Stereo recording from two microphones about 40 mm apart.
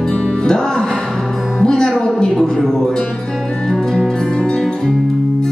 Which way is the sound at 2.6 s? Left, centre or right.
Centre.